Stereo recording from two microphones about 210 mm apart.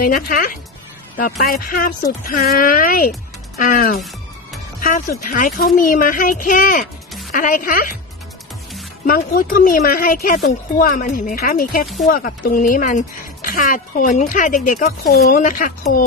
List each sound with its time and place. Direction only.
0.0 s a woman's voice: 40° left (ahead or behind)
9.0 s a woman's voice: 40° left (ahead or behind)